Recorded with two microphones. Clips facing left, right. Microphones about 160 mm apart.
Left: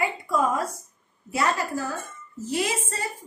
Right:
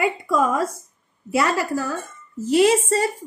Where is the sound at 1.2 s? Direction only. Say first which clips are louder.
Right 5 dB; 75° right (ahead or behind).